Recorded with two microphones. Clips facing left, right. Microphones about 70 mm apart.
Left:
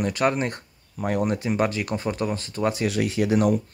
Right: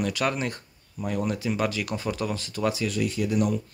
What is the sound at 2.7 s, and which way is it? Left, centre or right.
Speech, left.